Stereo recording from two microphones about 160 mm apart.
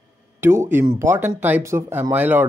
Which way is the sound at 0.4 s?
15° right (ahead or behind).